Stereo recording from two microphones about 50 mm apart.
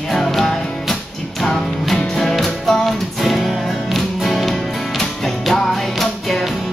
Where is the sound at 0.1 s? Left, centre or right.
Centre.